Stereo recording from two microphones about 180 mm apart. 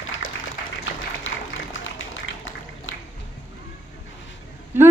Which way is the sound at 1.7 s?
90° left.